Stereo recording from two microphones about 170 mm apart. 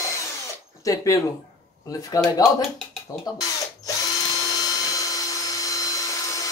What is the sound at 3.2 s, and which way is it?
Drill, 20° left (ahead or behind).